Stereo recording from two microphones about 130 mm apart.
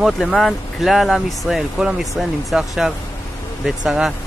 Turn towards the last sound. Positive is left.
turn(degrees=-5)  # may be behind; listen again after turning